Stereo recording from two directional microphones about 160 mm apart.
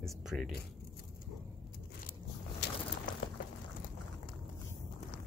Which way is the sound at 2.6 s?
90° left.